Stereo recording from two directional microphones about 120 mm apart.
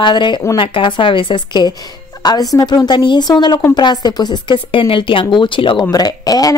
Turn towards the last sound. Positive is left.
turn(degrees=30)  # may be behind; listen again after turning